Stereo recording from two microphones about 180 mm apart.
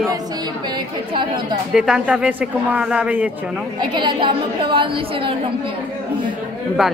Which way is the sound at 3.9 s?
25° right (ahead or behind).